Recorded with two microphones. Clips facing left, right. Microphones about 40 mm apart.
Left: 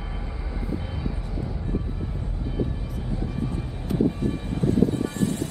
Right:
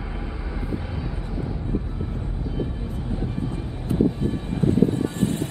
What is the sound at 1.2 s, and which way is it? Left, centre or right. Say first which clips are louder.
Vehicle: right 3 dB; centre.